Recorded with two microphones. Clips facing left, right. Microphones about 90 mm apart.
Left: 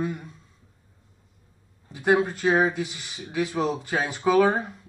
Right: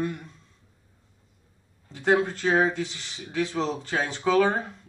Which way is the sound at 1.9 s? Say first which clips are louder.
Left 1 dB; 10° left (ahead or behind).